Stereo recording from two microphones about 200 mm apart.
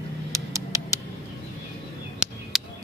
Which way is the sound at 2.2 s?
5° right (ahead or behind).